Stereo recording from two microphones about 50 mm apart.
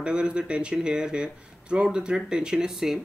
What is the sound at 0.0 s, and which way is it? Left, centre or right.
Speech, centre.